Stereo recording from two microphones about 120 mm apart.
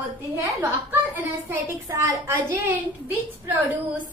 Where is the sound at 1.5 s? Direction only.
20° right (ahead or behind).